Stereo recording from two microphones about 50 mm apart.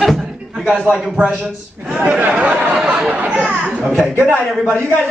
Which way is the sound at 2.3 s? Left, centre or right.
Right.